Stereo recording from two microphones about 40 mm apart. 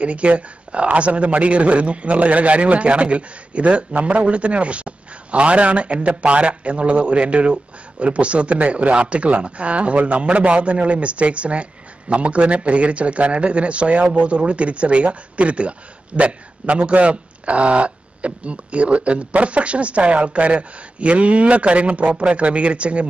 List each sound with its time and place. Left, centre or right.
0.0 s speech: right